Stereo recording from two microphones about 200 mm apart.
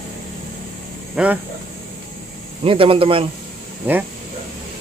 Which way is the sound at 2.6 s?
25° right (ahead or behind).